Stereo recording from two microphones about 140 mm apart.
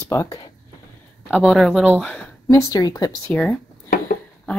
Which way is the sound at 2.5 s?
25° left (ahead or behind).